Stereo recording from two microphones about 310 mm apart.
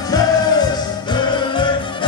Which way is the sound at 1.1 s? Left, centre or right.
Centre.